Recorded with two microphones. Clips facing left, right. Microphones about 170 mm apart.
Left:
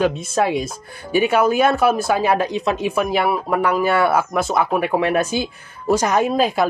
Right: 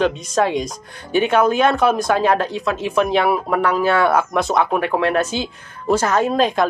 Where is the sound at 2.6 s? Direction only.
20° left (ahead or behind).